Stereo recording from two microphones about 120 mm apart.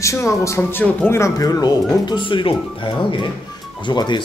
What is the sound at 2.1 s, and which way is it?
Speech, 40° left (ahead or behind).